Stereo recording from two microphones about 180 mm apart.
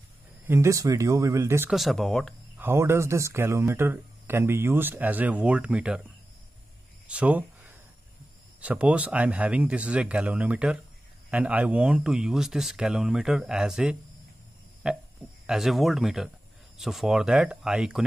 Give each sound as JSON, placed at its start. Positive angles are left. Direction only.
{"t": 0.5, "sound": "speech", "side_deg": -15}
{"t": 1.7, "sound": "speech", "side_deg": 0}
{"t": 2.5, "sound": "speech", "side_deg": -15}
{"t": 7.1, "sound": "speech", "side_deg": -5}